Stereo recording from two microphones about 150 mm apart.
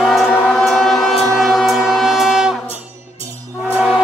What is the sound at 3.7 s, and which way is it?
Train, 5° right (ahead or behind).